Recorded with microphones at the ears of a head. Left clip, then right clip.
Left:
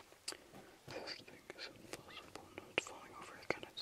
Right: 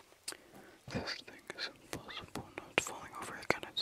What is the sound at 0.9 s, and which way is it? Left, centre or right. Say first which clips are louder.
Whispering: right 7 dB; right.